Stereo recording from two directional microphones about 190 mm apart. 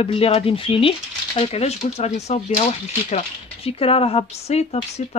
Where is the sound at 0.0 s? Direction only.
30° left (ahead or behind).